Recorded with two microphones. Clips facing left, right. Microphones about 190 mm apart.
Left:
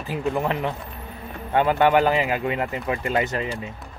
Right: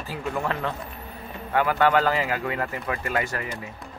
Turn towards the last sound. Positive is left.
turn(degrees=20)  # may be behind; listen again after turning